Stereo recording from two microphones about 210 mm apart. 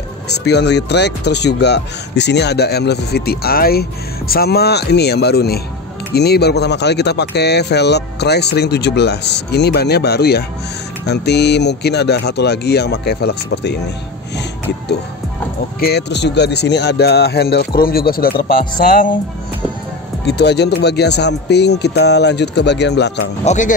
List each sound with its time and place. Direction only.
0.5 s speech: 55° left (ahead or behind)
15.8 s speech: 50° left (ahead or behind)
20.2 s speech: 55° left (ahead or behind)
23.4 s speech: 35° left (ahead or behind)